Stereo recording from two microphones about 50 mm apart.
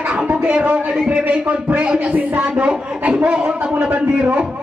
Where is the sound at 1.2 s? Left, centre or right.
Right.